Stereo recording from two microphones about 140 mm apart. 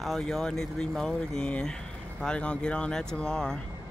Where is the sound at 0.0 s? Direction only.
Centre (ahead or behind).